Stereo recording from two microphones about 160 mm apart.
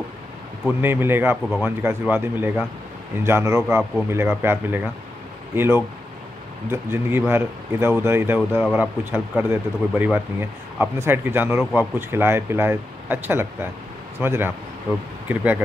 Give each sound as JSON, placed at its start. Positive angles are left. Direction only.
{"t": 0.7, "sound": "speech", "side_deg": -15}
{"t": 8.4, "sound": "speech", "side_deg": -5}